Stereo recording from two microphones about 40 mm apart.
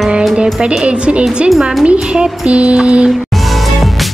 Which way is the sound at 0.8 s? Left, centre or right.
Right.